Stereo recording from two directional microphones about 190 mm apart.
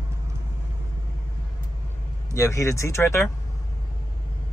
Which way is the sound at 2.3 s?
15° left (ahead or behind).